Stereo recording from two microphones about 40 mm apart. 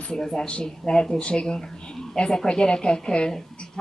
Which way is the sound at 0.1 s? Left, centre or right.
Centre.